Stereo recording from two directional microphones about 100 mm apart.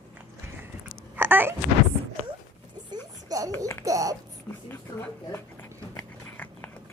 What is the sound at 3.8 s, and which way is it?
Speech, 35° right (ahead or behind).